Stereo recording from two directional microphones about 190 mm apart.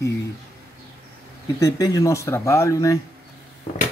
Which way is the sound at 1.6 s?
20° left (ahead or behind).